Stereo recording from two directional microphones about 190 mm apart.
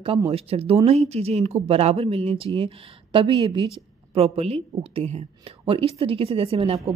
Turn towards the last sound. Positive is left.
turn(degrees=-30)  # may be behind; listen again after turning